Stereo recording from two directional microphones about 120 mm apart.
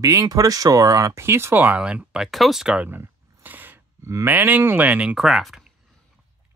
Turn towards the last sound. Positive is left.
turn(degrees=0)  # may be behind; listen again after turning